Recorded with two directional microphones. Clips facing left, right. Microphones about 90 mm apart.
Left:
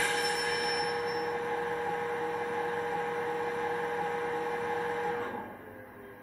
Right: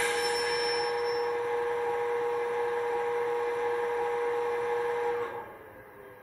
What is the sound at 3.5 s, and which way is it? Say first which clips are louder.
Vehicle: right 3 dB; 35° left (ahead or behind).